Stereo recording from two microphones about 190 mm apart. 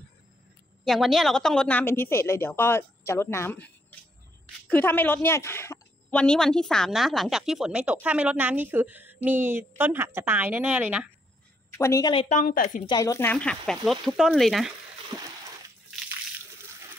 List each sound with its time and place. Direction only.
0.8 s a woman's voice: centre (ahead or behind)
11.7 s a woman's voice: 15° left (ahead or behind)
12.3 s a woman's voice: 45° left (ahead or behind)
12.8 s a woman's voice: 20° left (ahead or behind); by 14.7 s centre (ahead or behind)
15.1 s splash: 20° right (ahead or behind)